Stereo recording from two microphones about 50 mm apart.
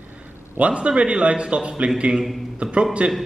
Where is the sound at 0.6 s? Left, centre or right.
Right.